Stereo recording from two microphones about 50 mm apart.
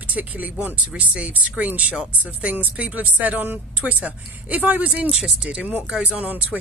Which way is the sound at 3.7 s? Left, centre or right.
Right.